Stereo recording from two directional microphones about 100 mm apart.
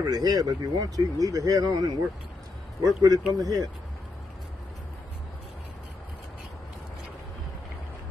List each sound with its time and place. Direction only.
0.0 s speech: 40° right (ahead or behind)